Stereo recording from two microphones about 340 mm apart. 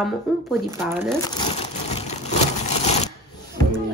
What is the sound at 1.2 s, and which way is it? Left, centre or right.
Crumpling, centre.